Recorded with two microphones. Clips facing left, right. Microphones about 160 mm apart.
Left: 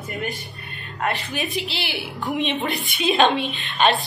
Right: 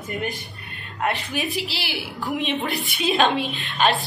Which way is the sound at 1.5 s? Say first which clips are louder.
Left 1 dB; 5° right (ahead or behind).